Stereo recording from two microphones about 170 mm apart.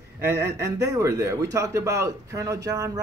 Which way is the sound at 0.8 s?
20° right (ahead or behind).